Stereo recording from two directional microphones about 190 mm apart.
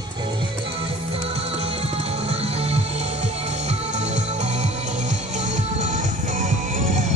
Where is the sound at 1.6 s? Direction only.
30° right (ahead or behind).